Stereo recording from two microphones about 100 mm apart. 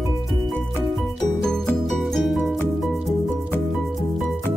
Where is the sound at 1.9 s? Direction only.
Centre (ahead or behind).